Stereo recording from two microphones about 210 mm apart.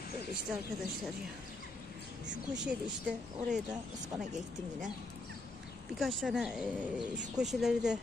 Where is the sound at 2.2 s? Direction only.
60° right (ahead or behind).